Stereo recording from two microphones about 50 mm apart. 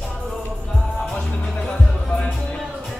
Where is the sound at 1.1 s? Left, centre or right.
Centre.